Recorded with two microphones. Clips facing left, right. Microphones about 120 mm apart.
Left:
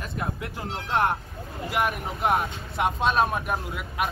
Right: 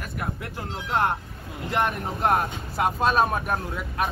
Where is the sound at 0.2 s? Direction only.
20° left (ahead or behind).